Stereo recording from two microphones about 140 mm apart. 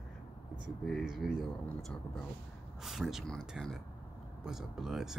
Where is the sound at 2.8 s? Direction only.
5° right (ahead or behind).